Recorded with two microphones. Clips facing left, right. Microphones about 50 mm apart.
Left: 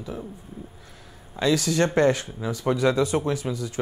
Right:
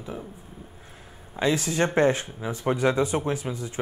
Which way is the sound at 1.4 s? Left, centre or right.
Right.